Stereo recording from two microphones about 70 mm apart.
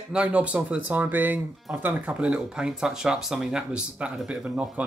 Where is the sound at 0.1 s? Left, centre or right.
Centre.